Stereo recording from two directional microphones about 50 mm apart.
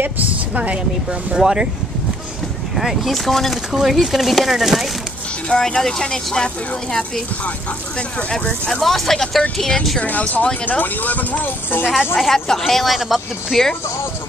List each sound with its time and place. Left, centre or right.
1.4 s speech: centre
2.7 s speech: centre
5.5 s speech: centre
9.9 s speech: left
12.2 s speech: centre